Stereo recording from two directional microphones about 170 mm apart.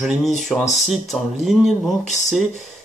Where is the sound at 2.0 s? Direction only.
45° left (ahead or behind).